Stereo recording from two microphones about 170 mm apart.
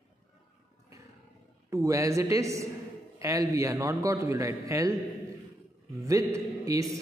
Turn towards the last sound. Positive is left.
turn(degrees=-20)  # may be behind; listen again after turning